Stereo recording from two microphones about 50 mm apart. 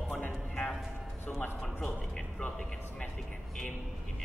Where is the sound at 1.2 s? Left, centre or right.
Left.